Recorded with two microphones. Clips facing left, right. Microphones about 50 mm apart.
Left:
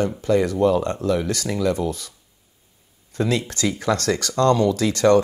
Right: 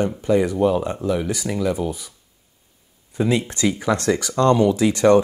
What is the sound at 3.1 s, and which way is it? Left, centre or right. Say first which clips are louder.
Speech: right 2 dB; centre.